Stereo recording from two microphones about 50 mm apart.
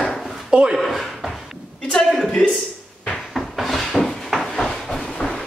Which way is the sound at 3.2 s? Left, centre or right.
Centre.